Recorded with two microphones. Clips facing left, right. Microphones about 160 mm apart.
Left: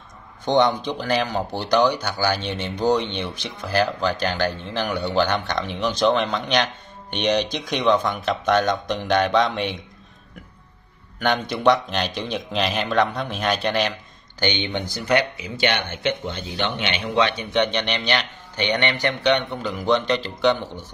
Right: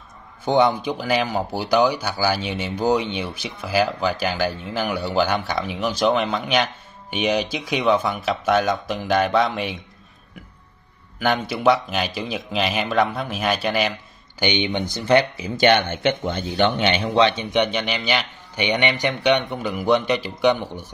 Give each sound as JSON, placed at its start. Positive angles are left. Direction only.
{"t": 0.5, "sound": "speech", "side_deg": -10}
{"t": 11.1, "sound": "speech", "side_deg": -5}
{"t": 14.4, "sound": "speech", "side_deg": -15}
{"t": 17.5, "sound": "speech", "side_deg": -10}